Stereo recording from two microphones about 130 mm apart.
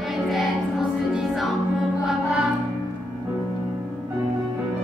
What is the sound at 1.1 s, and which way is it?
Music, 5° right (ahead or behind).